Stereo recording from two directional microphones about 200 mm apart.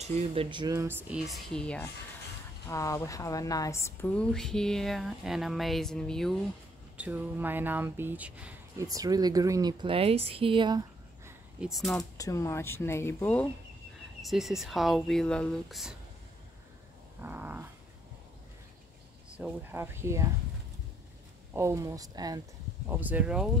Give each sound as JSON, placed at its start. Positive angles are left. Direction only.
{"t": 0.0, "sound": "speech", "side_deg": -30}
{"t": 2.7, "sound": "a woman's voice", "side_deg": 15}
{"t": 7.0, "sound": "speech", "side_deg": -10}
{"t": 8.8, "sound": "speech", "side_deg": -15}
{"t": 11.6, "sound": "a woman's voice", "side_deg": 0}
{"t": 12.0, "sound": "a woman's voice", "side_deg": 15}
{"t": 17.2, "sound": "speech", "side_deg": -10}
{"t": 19.3, "sound": "speech", "side_deg": -10}
{"t": 21.5, "sound": "speech", "side_deg": -15}